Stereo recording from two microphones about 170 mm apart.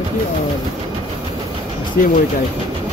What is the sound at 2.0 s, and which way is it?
Speech, 55° left (ahead or behind).